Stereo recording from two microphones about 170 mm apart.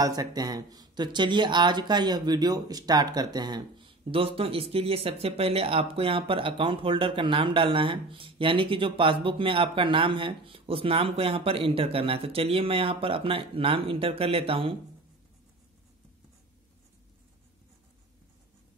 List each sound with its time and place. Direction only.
0.0 s speech: 20° right (ahead or behind)